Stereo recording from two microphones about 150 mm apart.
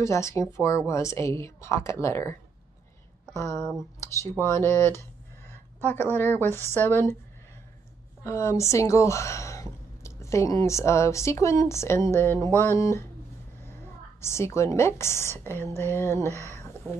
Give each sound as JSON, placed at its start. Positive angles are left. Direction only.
{"t": 0.0, "sound": "speech", "side_deg": 20}
{"t": 4.0, "sound": "a woman's voice", "side_deg": 20}
{"t": 8.2, "sound": "speech", "side_deg": 20}
{"t": 14.2, "sound": "a woman's voice", "side_deg": 20}
{"t": 16.3, "sound": "a sound", "side_deg": 15}